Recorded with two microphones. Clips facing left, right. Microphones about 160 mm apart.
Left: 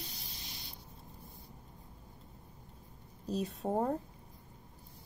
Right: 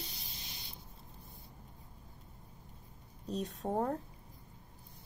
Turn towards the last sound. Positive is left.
turn(degrees=5)  # may be behind; listen again after turning